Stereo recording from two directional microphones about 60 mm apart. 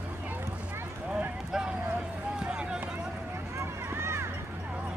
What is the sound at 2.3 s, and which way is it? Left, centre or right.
Run, centre.